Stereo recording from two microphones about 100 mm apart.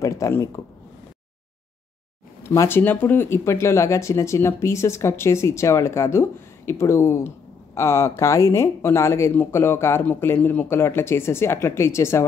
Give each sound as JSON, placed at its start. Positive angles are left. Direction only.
{"t": 0.0, "sound": "speech", "side_deg": 30}
{"t": 2.4, "sound": "speech", "side_deg": 30}